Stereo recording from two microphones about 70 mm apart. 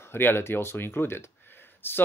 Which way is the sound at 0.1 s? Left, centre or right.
Left.